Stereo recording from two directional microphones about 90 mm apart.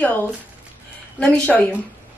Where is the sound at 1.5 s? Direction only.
20° left (ahead or behind).